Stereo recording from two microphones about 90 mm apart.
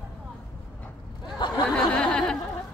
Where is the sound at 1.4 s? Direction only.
60° left (ahead or behind).